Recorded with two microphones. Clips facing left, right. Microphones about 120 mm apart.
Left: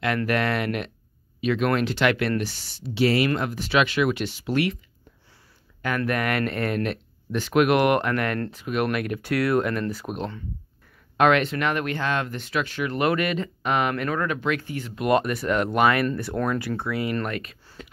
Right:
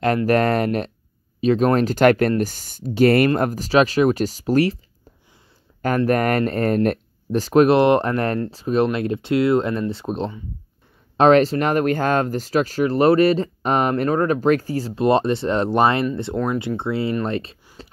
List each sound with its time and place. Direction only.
0.3 s speech: 40° right (ahead or behind)
5.8 s speech: 40° right (ahead or behind)
17.8 s a sound: 30° right (ahead or behind)